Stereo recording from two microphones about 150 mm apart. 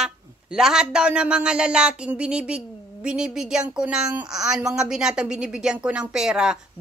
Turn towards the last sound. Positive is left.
turn(degrees=-5)  # may be behind; listen again after turning